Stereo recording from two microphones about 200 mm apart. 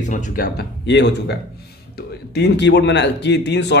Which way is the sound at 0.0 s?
40° left (ahead or behind).